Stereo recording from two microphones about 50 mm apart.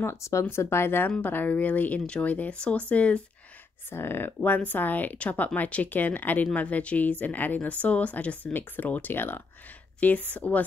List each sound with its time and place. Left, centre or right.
0.0 s speech: left
1.2 s speech: left
3.9 s speech: left
8.5 s speech: left
9.9 s speech: left